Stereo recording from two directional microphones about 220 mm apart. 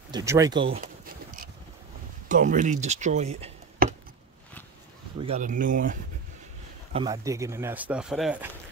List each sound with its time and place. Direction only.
0.1 s speech: 15° right (ahead or behind)
0.7 s pigeon: 40° right (ahead or behind)
2.2 s speech: 35° right (ahead or behind)
5.2 s speech: 35° right (ahead or behind)
6.9 s speech: 20° right (ahead or behind); by 8.5 s 5° right (ahead or behind)